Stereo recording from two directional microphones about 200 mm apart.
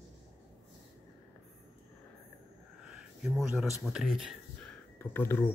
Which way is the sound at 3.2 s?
5° right (ahead or behind).